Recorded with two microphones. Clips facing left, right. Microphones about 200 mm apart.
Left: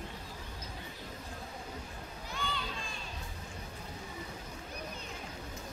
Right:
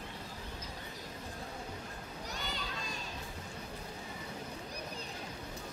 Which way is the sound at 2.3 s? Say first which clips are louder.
Left 4 dB; 40° right (ahead or behind).